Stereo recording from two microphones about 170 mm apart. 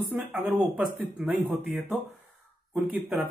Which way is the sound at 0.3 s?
5° right (ahead or behind).